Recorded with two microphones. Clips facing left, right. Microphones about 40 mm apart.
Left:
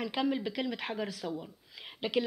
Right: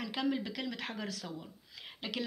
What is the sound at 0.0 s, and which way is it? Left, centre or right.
Speech, centre.